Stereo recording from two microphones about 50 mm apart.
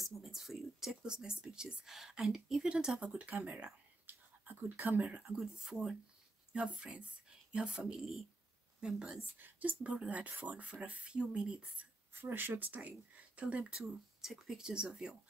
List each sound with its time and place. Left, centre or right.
0.0 s speech: centre
1.0 s speech: centre
2.6 s speech: centre; by 5.0 s right
5.6 s speech: centre
8.0 s speech: centre
8.8 s speech: centre
9.4 s speech: right
12.1 s speech: right
14.2 s speech: centre
14.6 s speech: centre